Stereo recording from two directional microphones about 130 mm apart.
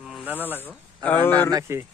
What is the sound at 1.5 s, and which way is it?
Speech, 20° right (ahead or behind).